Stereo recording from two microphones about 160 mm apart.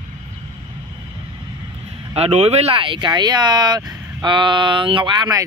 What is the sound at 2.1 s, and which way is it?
Speech, 40° right (ahead or behind).